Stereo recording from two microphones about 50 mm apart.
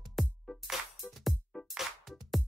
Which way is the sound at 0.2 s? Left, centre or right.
Centre.